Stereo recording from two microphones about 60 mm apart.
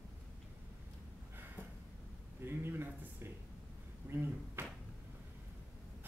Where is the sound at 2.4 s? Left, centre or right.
Right.